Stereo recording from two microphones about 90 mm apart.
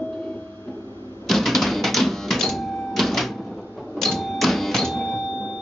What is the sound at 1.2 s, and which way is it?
Cash register, centre (ahead or behind).